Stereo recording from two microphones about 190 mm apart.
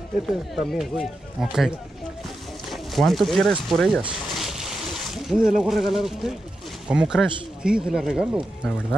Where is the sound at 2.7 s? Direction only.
Centre (ahead or behind).